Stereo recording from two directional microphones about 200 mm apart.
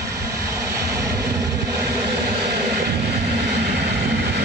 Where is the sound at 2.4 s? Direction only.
55° right (ahead or behind).